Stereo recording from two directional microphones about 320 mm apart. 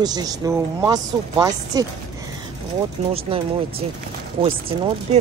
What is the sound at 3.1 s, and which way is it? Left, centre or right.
Speech, centre.